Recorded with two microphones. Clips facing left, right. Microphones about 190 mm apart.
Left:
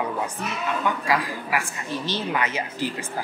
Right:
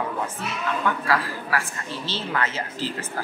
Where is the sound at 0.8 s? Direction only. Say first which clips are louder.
Even; 15° left (ahead or behind).